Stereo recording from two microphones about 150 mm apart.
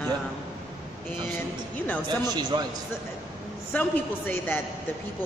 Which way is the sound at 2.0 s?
30° right (ahead or behind).